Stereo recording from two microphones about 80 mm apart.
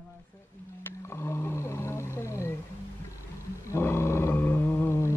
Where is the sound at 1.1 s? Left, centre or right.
Left.